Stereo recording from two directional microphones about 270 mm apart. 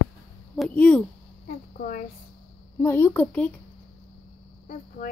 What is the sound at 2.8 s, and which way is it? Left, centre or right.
Speech, centre.